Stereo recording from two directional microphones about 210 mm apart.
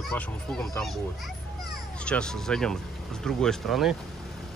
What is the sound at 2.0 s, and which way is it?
Speech, 5° left (ahead or behind).